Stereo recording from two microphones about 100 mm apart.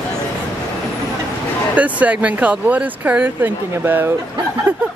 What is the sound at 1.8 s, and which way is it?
Speech, 15° right (ahead or behind).